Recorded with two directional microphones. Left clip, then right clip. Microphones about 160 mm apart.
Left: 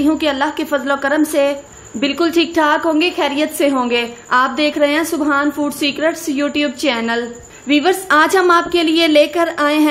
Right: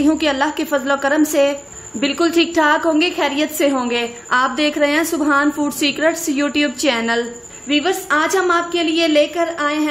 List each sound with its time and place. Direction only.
0.0 s a woman's voice: centre (ahead or behind)
7.6 s a woman's voice: 20° left (ahead or behind)